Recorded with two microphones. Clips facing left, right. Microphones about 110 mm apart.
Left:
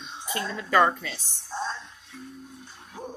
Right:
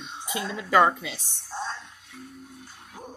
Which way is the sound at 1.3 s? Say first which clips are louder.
Left 3 dB; 10° right (ahead or behind).